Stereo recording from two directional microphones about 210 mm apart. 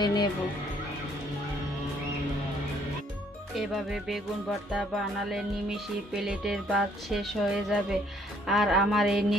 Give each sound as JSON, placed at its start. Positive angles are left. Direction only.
{"t": 0.0, "sound": "speech", "side_deg": 20}
{"t": 3.5, "sound": "music", "side_deg": 0}